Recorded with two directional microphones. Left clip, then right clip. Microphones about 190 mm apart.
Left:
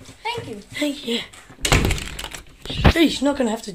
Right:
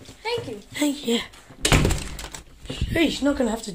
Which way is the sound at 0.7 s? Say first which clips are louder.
Even; 10° right (ahead or behind).